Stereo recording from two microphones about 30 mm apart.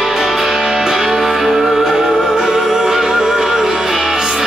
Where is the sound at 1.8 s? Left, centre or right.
Centre.